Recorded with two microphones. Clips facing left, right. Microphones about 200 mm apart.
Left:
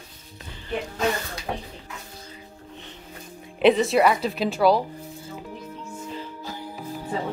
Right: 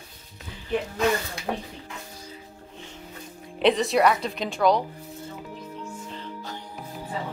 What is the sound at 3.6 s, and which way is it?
Speech, centre (ahead or behind).